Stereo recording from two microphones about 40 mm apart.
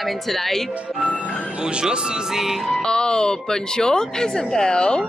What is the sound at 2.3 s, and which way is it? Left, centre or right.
Music, centre.